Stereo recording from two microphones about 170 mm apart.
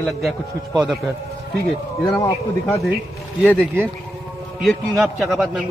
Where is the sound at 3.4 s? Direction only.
10° left (ahead or behind).